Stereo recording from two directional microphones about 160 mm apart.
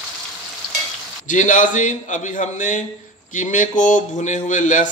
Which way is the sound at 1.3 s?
50° left (ahead or behind).